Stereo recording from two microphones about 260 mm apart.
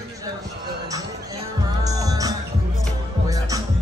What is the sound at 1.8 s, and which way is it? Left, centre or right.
Music, centre.